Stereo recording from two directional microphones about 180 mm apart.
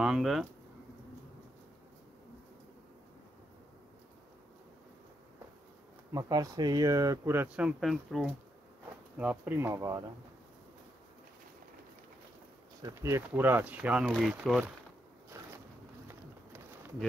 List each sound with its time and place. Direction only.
0.0 s speech: centre (ahead or behind)
6.1 s speech: 20° right (ahead or behind)
12.8 s speech: 15° right (ahead or behind)
15.3 s boat: 15° right (ahead or behind)